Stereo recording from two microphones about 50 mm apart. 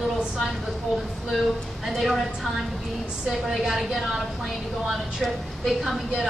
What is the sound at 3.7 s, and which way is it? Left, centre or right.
A woman's voice, centre.